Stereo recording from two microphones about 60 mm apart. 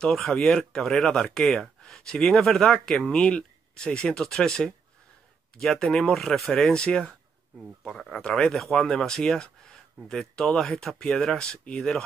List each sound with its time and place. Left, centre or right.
0.1 s speech: centre
8.2 s speech: centre
8.5 s speech: centre